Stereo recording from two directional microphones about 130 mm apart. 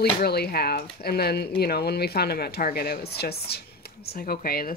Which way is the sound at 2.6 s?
90° left.